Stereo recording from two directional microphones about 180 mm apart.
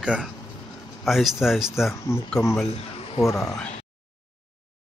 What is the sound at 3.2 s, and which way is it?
Speech, 15° left (ahead or behind).